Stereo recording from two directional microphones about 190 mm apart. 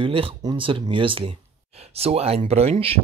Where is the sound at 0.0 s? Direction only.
30° right (ahead or behind).